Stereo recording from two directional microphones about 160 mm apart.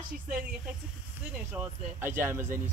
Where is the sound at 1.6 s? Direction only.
15° right (ahead or behind).